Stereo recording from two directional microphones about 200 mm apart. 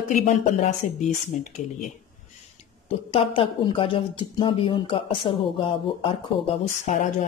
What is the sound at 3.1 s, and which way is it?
Speech, 30° left (ahead or behind).